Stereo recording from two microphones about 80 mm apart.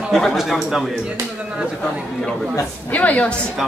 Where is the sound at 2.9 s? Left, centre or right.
Centre.